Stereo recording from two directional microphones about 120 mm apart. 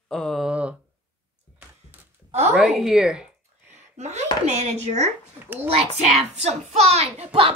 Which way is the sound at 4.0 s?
70° right (ahead or behind).